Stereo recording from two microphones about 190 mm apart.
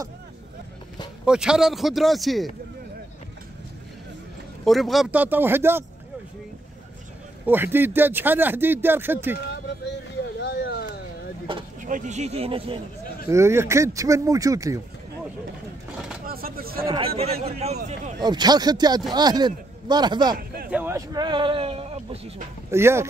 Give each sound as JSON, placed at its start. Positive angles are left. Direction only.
{"t": 1.2, "sound": "a man's voice", "side_deg": -5}
{"t": 4.6, "sound": "speech", "side_deg": 0}
{"t": 7.4, "sound": "speech", "side_deg": -10}
{"t": 10.4, "sound": "a sound", "side_deg": 60}
{"t": 11.8, "sound": "a man's voice", "side_deg": -40}
{"t": 13.3, "sound": "speech", "side_deg": -15}
{"t": 16.3, "sound": "a sound", "side_deg": -50}
{"t": 17.2, "sound": "a man's voice", "side_deg": -35}
{"t": 18.2, "sound": "speech", "side_deg": -20}
{"t": 20.3, "sound": "a sound", "side_deg": -50}
{"t": 20.7, "sound": "speech", "side_deg": -15}
{"t": 22.7, "sound": "speech", "side_deg": -15}